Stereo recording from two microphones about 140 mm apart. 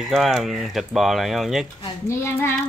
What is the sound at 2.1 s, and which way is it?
Speech, 15° left (ahead or behind).